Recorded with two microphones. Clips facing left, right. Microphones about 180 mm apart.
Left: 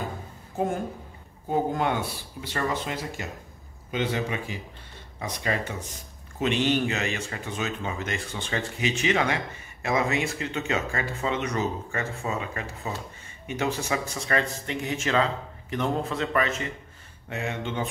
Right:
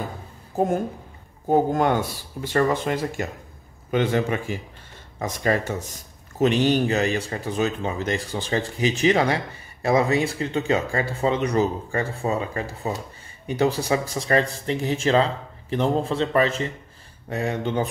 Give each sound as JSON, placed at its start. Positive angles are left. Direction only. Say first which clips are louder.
{"t": 0.5, "sound": "speech", "louder": "right 5 dB", "side_deg": -35}